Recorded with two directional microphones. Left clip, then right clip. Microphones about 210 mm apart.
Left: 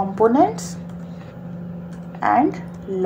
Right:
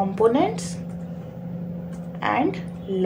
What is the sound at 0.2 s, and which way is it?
Speech, 30° left (ahead or behind).